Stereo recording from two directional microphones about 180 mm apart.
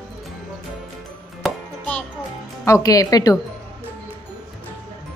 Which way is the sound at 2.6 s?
20° left (ahead or behind).